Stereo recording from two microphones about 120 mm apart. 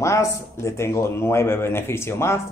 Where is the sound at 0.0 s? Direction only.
25° left (ahead or behind).